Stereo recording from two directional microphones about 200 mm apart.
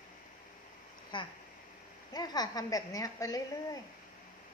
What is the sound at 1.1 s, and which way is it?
Speech, 25° left (ahead or behind).